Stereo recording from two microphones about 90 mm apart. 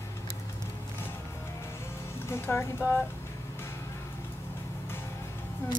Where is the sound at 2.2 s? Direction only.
30° left (ahead or behind).